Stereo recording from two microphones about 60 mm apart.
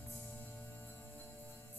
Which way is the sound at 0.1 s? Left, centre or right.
Left.